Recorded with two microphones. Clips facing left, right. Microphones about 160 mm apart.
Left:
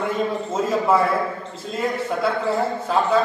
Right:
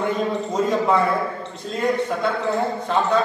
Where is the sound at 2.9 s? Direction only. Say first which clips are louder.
Left 1 dB; 5° left (ahead or behind).